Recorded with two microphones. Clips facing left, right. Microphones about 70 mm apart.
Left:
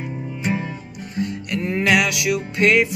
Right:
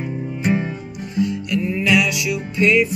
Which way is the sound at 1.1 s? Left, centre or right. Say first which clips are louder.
Right 4 dB; left.